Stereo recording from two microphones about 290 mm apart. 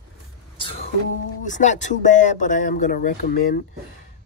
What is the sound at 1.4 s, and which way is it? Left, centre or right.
Speech, left.